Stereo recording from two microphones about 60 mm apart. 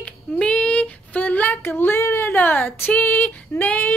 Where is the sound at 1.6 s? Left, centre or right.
Left.